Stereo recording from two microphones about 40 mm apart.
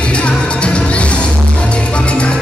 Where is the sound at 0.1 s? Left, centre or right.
Left.